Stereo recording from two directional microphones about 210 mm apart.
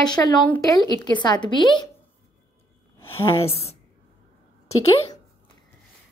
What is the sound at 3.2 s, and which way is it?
Speech, 25° left (ahead or behind).